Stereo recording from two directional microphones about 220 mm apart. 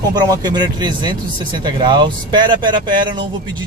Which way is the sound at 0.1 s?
20° right (ahead or behind).